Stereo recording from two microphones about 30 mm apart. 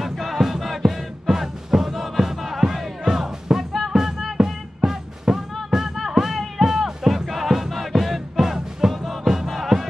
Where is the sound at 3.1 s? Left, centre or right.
Centre.